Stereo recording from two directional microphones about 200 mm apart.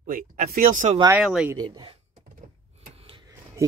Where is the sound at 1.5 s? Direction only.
20° right (ahead or behind).